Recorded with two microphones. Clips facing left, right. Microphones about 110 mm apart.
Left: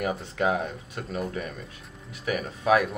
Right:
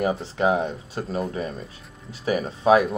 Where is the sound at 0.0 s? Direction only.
30° right (ahead or behind).